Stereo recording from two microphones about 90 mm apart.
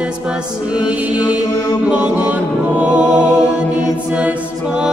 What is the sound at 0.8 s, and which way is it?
Chant, 15° right (ahead or behind).